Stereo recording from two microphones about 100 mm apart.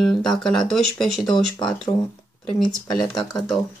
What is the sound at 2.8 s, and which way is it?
Speech, 45° left (ahead or behind).